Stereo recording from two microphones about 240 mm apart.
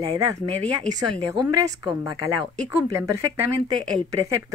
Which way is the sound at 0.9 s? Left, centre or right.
Centre.